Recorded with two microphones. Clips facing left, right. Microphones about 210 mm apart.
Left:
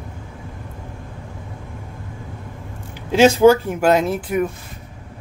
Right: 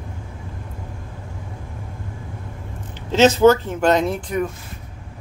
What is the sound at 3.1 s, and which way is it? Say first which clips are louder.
Speech: left 1 dB; 10° left (ahead or behind).